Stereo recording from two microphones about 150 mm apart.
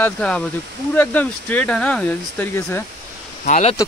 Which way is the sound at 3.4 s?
50° left (ahead or behind).